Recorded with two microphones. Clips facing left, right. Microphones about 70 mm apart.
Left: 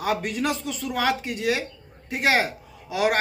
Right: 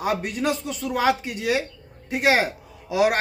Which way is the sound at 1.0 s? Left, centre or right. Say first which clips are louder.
Right 2 dB; centre.